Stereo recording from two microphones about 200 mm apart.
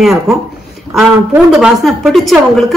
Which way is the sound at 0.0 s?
Centre (ahead or behind).